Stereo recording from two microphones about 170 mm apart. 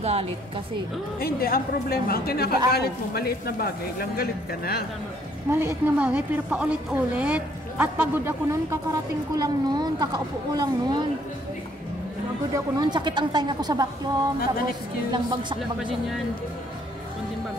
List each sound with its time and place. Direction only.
0.0 s a woman's voice: 35° right (ahead or behind)
1.2 s a man's voice: 60° left (ahead or behind)
5.5 s a woman's voice: 15° right (ahead or behind)
12.5 s a woman's voice: 25° right (ahead or behind)